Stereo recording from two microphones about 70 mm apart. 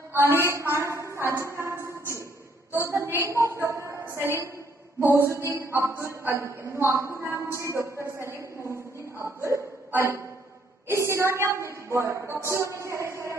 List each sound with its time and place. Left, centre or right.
0.1 s a woman's voice: right
0.7 s a woman's voice: right
5.0 s a man's voice: right
8.6 s a sound: right
10.9 s a woman's voice: right